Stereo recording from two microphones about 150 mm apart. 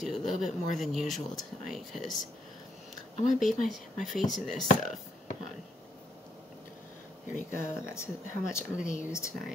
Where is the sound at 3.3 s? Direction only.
Centre (ahead or behind).